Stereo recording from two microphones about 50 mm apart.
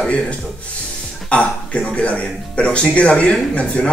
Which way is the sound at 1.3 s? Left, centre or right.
Left.